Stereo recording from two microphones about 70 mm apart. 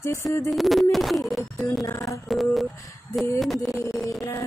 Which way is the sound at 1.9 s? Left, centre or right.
Left.